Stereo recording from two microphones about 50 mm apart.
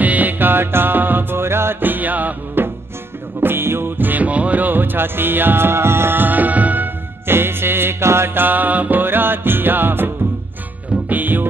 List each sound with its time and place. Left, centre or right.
0.0 s music: right
1.8 s music: right
3.3 s music: right
4.0 s music: right
7.2 s music: right
8.4 s music: right
9.0 s music: right